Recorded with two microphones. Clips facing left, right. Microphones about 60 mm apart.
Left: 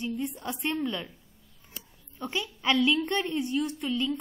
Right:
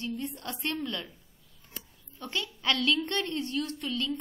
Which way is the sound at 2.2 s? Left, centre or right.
Centre.